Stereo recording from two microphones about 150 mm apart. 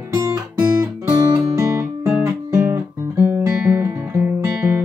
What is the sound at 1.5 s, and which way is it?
Guitar, 20° right (ahead or behind).